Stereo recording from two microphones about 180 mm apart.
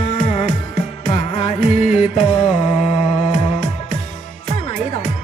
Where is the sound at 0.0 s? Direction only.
35° left (ahead or behind).